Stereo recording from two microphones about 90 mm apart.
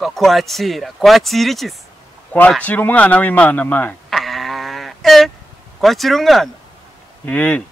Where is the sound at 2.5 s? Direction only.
15° left (ahead or behind).